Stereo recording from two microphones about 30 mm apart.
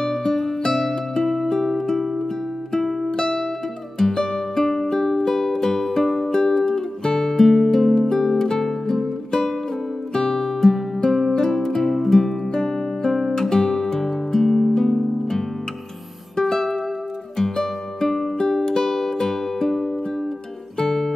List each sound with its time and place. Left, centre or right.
0.0 s music: centre
1.5 s music: centre
6.3 s music: centre
10.1 s music: centre
18.8 s music: centre